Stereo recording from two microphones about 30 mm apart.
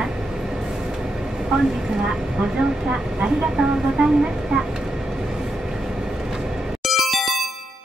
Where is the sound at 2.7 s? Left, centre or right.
Right.